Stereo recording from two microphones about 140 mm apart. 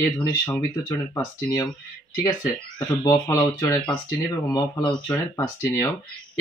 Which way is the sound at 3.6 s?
10° left (ahead or behind).